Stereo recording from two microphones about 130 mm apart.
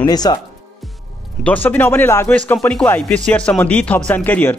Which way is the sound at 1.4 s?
10° left (ahead or behind).